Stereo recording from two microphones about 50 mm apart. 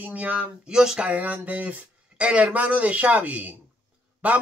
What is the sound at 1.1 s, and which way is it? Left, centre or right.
A man's voice, right.